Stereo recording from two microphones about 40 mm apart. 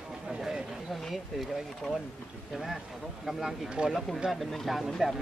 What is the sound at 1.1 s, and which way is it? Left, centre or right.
Speech, centre.